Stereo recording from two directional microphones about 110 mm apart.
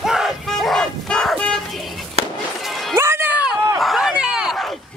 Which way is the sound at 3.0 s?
20° right (ahead or behind).